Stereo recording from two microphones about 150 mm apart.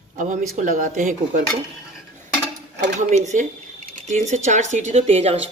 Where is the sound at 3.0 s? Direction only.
50° right (ahead or behind).